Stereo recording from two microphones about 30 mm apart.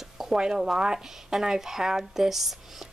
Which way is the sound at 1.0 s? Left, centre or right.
Centre.